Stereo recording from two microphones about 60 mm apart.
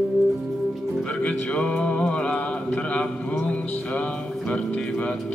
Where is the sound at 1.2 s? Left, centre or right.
Left.